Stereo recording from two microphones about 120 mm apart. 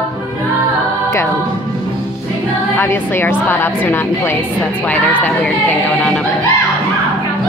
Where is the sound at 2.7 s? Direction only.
15° left (ahead or behind).